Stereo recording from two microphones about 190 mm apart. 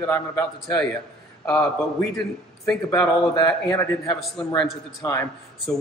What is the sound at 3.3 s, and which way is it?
Speech, 20° left (ahead or behind).